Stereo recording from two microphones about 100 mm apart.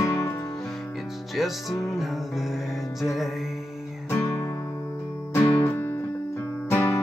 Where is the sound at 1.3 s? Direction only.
Centre (ahead or behind).